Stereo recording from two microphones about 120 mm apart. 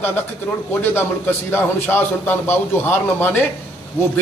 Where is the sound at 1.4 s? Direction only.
20° left (ahead or behind).